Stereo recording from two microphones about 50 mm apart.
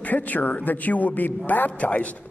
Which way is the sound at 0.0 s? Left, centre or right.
Left.